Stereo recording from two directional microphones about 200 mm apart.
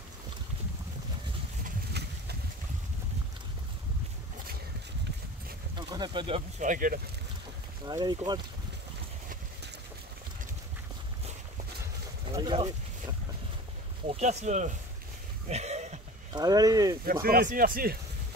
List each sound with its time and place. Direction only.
1.6 s vehicle: 55° right (ahead or behind)
5.8 s boat: 20° right (ahead or behind)
6.6 s speech: 40° right (ahead or behind)
7.8 s speech: 20° right (ahead or behind)
12.4 s a sound: 25° right (ahead or behind)
14.0 s speech: 35° right (ahead or behind)
15.4 s a sound: 35° right (ahead or behind)
16.3 s speech: 20° right (ahead or behind)
17.0 s speech: 50° right (ahead or behind)